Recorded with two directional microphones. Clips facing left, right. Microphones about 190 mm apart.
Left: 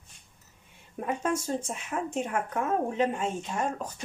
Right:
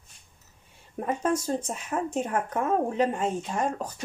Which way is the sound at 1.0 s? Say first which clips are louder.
Right 3 dB; 40° right (ahead or behind).